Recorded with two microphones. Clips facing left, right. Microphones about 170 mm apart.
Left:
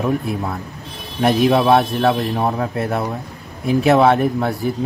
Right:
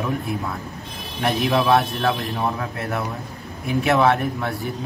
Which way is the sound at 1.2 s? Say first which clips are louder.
Left 6 dB; 35° left (ahead or behind).